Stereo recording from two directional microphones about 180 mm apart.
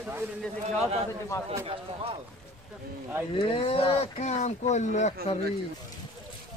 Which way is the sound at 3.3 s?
30° left (ahead or behind).